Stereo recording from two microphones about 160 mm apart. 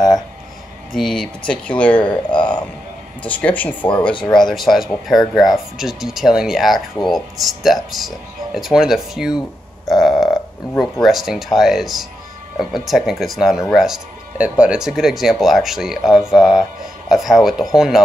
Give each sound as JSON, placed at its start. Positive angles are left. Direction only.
{"t": 0.9, "sound": "speech", "side_deg": 0}
{"t": 2.0, "sound": "a sound", "side_deg": 30}
{"t": 3.3, "sound": "speech", "side_deg": 10}
{"t": 9.8, "sound": "burping", "side_deg": 0}
{"t": 10.8, "sound": "speech", "side_deg": 0}